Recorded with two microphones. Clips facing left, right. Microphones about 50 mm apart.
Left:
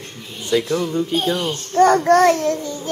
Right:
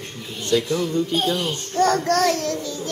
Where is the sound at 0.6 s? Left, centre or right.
Centre.